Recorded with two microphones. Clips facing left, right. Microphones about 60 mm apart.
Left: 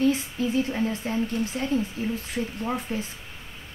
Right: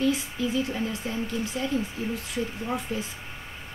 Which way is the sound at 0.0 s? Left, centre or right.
Left.